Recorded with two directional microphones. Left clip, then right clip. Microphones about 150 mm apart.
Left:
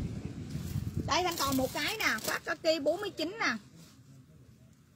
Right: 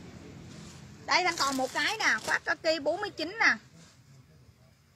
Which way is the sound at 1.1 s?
10° left (ahead or behind).